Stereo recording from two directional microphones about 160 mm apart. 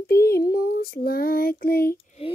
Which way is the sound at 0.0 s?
75° left (ahead or behind).